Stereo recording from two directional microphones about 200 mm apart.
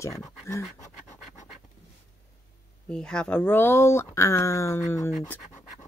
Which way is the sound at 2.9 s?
5° left (ahead or behind).